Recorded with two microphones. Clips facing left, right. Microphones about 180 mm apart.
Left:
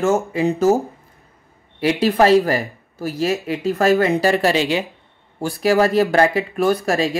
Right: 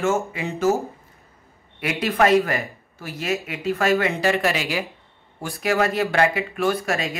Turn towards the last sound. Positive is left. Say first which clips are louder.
# left 5 dB
turn(degrees=35)  # may be behind; listen again after turning